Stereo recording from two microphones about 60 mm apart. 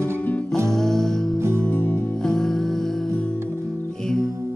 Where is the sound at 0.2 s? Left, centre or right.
Left.